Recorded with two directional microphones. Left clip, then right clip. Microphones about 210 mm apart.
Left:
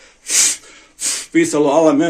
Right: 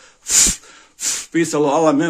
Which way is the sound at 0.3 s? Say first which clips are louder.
Even; 45° right (ahead or behind).